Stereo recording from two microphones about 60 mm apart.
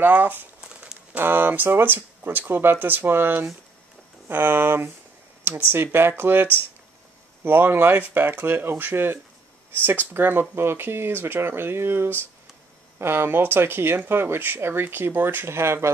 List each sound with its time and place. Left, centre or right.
0.0 s speech: right
0.6 s crumpling: centre
1.1 s speech: right